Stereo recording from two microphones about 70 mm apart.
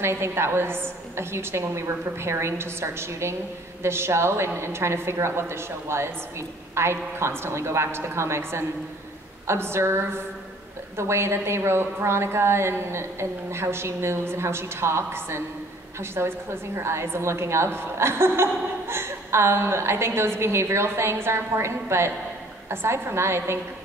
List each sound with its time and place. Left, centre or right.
0.0 s a woman's voice: right